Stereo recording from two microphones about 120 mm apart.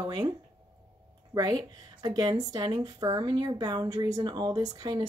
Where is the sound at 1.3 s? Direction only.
30° right (ahead or behind).